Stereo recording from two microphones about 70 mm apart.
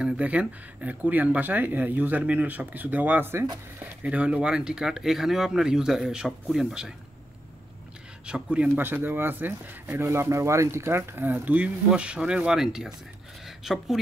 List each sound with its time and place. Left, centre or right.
0.0 s speech: centre
3.8 s speech: centre
8.3 s speech: centre
8.7 s a woman's voice: right; by 13.8 s centre